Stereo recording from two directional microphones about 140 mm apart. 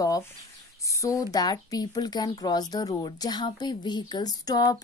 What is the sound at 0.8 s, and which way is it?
A woman's voice, 25° left (ahead or behind).